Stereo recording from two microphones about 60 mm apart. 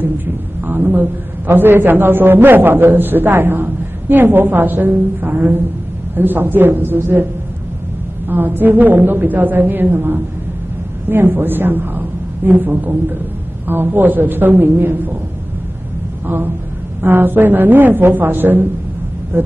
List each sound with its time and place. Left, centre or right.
0.7 s a sound: right
1.5 s a man's voice: right
8.3 s a man's voice: right
16.3 s a man's voice: right